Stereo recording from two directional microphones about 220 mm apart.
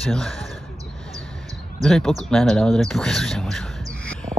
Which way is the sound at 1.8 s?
Centre (ahead or behind).